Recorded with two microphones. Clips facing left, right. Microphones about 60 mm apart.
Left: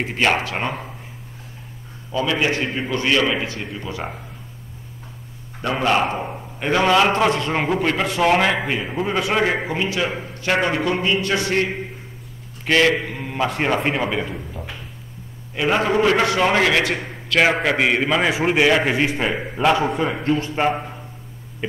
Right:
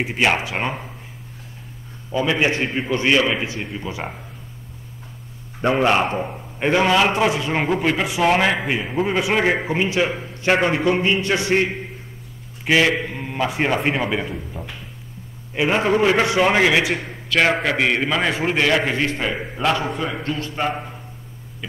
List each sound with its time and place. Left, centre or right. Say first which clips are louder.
0.0 s a man's voice: even; centre
2.1 s a man's voice: right 1 dB; right
5.6 s a man's voice: right 2 dB; right
12.6 s a man's voice: even; centre
15.5 s a man's voice: even; centre
17.4 s a man's voice: left 1 dB; centre; by 20.7 s left